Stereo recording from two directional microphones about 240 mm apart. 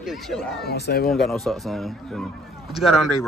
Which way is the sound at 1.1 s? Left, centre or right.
Centre.